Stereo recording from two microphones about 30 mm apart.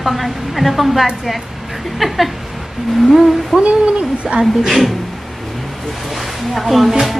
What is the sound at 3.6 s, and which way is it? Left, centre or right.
Speech, right.